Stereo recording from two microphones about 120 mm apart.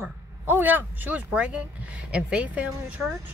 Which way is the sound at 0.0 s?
15° right (ahead or behind).